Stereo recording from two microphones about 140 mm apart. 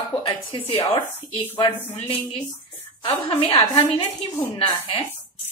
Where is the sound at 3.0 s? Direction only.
40° left (ahead or behind).